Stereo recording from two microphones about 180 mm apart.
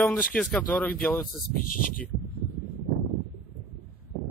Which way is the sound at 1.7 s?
50° left (ahead or behind).